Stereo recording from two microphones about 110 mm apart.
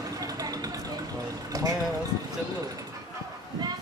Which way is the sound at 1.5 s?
35° right (ahead or behind).